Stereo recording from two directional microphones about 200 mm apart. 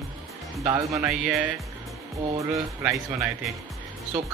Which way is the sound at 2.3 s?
15° right (ahead or behind).